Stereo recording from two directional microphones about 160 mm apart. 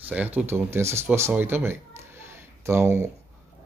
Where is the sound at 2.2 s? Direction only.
15° right (ahead or behind).